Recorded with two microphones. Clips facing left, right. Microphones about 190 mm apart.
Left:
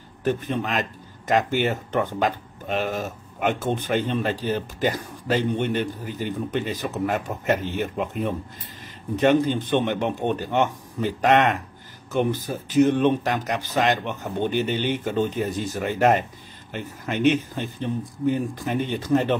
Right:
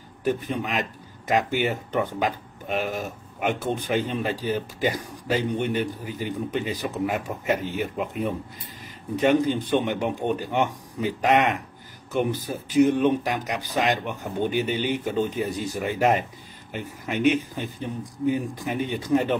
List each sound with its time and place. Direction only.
0.2 s speech: 10° right (ahead or behind)
16.7 s speech: 10° right (ahead or behind)